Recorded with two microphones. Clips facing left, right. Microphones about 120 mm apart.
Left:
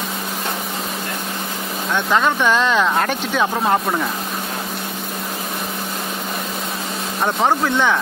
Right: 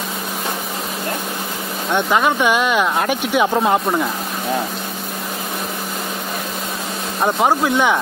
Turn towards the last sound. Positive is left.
turn(degrees=-10)  # may be behind; listen again after turning